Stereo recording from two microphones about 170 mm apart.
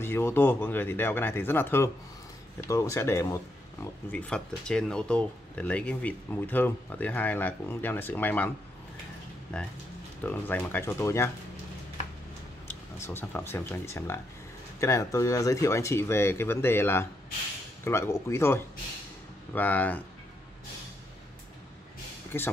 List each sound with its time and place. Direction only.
0.0 s speech: 15° left (ahead or behind)
10.2 s speech: 10° left (ahead or behind)
12.6 s speech: 10° left (ahead or behind)
22.3 s speech: 15° left (ahead or behind)